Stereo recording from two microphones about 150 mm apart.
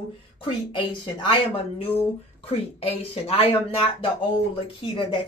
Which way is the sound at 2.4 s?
40° left (ahead or behind).